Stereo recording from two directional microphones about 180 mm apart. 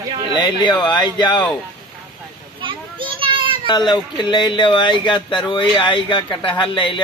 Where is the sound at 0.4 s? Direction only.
25° left (ahead or behind).